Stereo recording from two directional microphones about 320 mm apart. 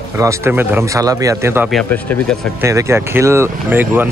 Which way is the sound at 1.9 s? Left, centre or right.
Centre.